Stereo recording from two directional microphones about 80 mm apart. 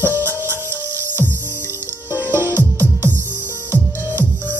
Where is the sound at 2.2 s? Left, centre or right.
Right.